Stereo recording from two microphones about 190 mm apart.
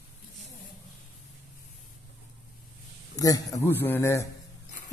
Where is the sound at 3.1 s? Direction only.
20° left (ahead or behind).